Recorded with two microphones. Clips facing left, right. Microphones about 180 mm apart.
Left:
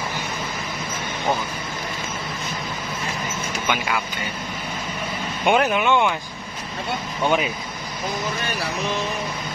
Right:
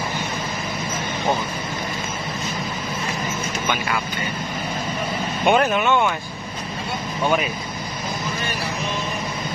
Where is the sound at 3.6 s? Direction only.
10° left (ahead or behind).